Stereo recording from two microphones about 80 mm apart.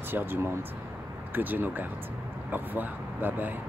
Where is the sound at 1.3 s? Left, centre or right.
Right.